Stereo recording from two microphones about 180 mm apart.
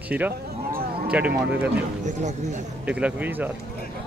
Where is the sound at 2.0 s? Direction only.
40° right (ahead or behind).